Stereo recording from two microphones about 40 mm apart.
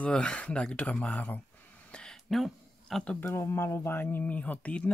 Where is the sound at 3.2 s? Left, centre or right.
Left.